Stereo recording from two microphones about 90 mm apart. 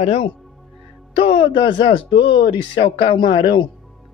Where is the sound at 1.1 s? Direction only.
80° left.